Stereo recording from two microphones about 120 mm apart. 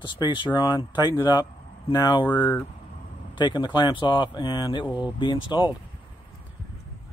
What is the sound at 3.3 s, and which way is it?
Speech, 40° left (ahead or behind).